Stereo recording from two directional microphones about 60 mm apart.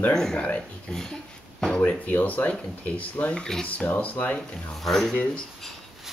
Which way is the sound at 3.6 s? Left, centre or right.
Left.